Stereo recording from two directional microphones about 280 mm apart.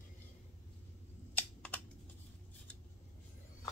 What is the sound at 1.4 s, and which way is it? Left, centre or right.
Typing, centre.